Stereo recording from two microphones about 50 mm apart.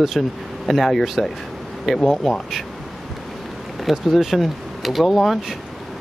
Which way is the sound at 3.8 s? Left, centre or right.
Centre.